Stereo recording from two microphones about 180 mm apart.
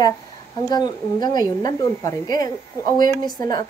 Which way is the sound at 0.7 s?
20° left (ahead or behind).